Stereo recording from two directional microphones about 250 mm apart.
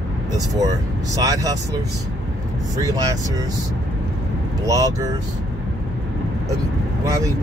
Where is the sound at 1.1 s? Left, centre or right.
Centre.